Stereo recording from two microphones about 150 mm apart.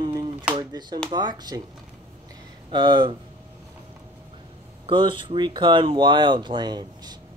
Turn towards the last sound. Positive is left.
turn(degrees=-30)  # may be behind; listen again after turning